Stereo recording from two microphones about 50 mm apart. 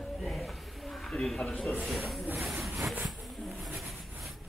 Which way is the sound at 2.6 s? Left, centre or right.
Centre.